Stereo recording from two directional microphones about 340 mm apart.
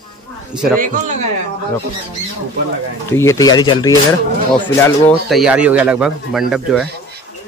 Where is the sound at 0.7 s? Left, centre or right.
Right.